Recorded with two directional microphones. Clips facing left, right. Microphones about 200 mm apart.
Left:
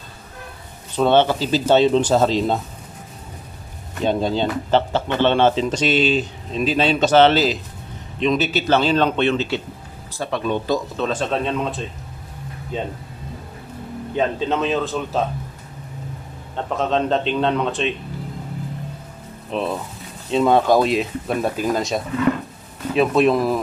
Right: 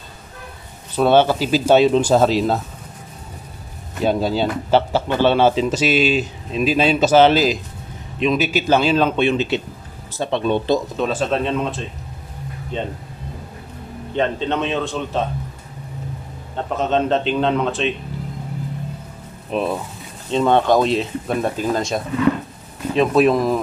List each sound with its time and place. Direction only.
0.9 s speech: 10° right (ahead or behind)
4.0 s speech: 5° right (ahead or behind); by 10.8 s 25° right (ahead or behind)
11.0 s a man's voice: 5° right (ahead or behind)
14.1 s a man's voice: 5° left (ahead or behind)
16.7 s a man's voice: centre (ahead or behind)
19.5 s speech: 10° right (ahead or behind)
20.2 s a man's voice: 5° left (ahead or behind)